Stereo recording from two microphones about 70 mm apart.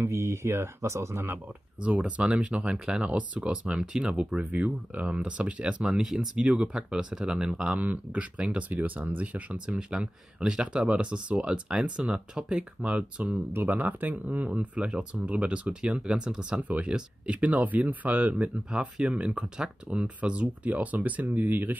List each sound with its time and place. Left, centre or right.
0.0 s speech: right
1.8 s speech: centre
13.5 s speech: right